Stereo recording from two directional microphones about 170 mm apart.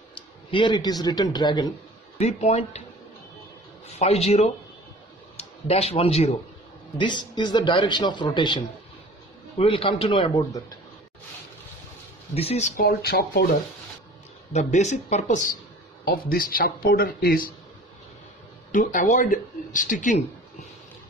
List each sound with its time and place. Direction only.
0.5 s a man's voice: 30° left (ahead or behind)
2.1 s speech: 40° left (ahead or behind)
4.0 s a man's voice: 40° left (ahead or behind)
12.4 s speech: 40° left (ahead or behind)
12.8 s speech: 65° left (ahead or behind)
14.5 s speech: 40° left (ahead or behind)
16.1 s speech: 60° left (ahead or behind)
18.7 s speech: 50° left (ahead or behind)